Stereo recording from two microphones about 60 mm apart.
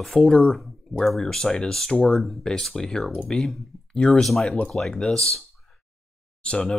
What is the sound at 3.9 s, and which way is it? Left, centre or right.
Speech, centre.